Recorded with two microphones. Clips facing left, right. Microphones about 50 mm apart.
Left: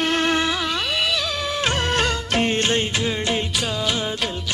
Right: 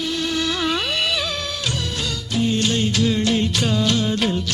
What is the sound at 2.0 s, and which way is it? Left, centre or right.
Music, left.